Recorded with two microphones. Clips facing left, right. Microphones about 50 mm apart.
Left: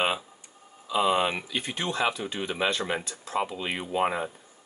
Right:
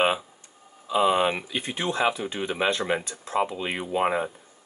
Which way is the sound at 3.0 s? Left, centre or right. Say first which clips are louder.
Right 2 dB; right.